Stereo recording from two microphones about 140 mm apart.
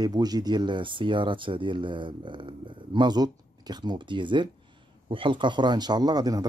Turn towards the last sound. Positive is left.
turn(degrees=-30)  # may be behind; listen again after turning